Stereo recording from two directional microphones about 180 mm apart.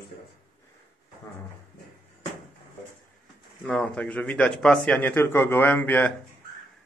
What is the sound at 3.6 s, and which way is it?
A man's voice, 5° left (ahead or behind).